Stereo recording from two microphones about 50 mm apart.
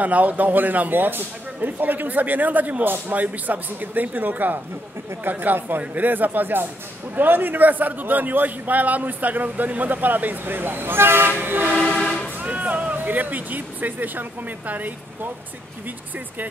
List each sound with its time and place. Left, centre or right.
0.0 s a man's voice: right
12.0 s music: centre
12.4 s speech: right